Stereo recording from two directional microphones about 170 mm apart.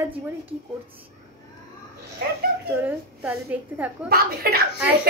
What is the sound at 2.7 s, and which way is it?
A woman's voice, 10° right (ahead or behind).